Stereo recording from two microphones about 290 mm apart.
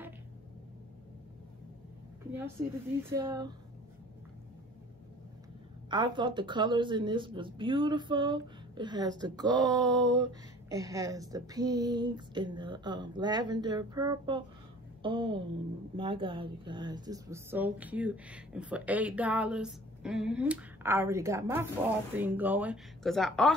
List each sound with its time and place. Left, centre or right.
3.0 s speech: centre
5.9 s a woman's voice: centre